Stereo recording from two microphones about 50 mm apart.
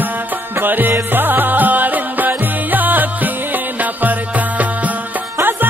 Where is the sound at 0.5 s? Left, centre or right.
Right.